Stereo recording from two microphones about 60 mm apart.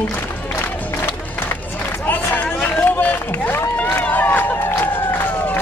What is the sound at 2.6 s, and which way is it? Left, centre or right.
Run, left.